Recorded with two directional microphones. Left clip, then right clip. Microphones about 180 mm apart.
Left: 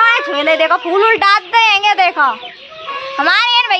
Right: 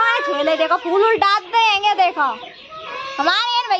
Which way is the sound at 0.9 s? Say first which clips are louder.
Left 4 dB; 20° left (ahead or behind).